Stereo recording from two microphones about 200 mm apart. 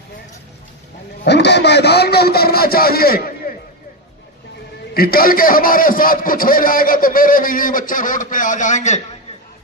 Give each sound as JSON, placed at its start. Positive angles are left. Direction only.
{"t": 1.2, "sound": "a man's voice", "side_deg": 60}
{"t": 4.9, "sound": "a man's voice", "side_deg": 50}